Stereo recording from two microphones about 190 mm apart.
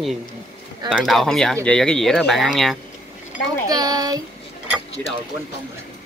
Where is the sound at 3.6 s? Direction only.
20° right (ahead or behind).